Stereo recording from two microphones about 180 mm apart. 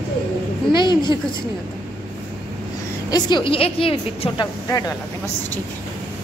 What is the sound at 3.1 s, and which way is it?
Speech, 25° left (ahead or behind).